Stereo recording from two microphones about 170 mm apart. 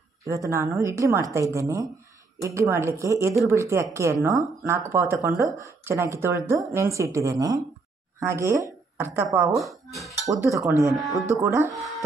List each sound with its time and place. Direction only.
0.2 s a woman's voice: 15° right (ahead or behind)
9.6 s speech: centre (ahead or behind)
10.2 s a woman's voice: 20° right (ahead or behind)